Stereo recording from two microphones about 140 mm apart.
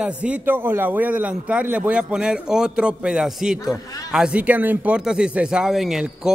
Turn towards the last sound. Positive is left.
turn(degrees=-5)  # may be behind; listen again after turning